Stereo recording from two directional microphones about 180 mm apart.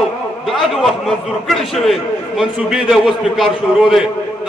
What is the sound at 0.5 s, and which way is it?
A man's voice, centre (ahead or behind).